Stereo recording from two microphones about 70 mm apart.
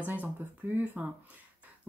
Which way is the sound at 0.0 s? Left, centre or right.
Right.